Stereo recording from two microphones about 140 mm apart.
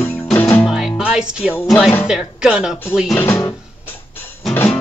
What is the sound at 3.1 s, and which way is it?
Speech, 15° left (ahead or behind).